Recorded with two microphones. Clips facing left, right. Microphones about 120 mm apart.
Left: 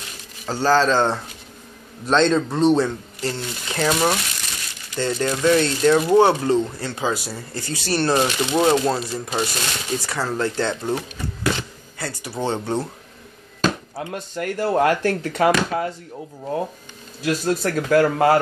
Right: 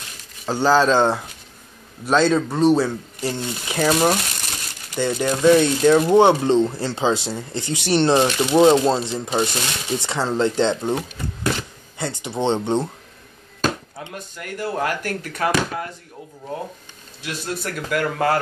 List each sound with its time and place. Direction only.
0.5 s speech: 15° right (ahead or behind)
12.0 s speech: 20° right (ahead or behind)
13.9 s speech: 30° left (ahead or behind)
17.2 s speech: 35° left (ahead or behind)
18.1 s speech: 25° left (ahead or behind)